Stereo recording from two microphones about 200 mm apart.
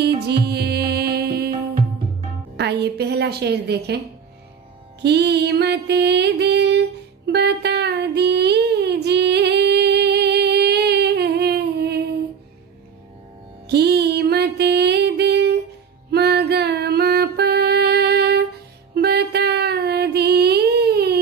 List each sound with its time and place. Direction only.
0.0 s music: 55° right (ahead or behind)
2.5 s a woman's voice: 55° right (ahead or behind)
5.0 s music: 55° right (ahead or behind)
13.7 s music: 55° right (ahead or behind)